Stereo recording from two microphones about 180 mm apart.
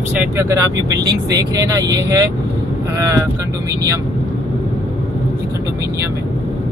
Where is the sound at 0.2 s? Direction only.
15° right (ahead or behind).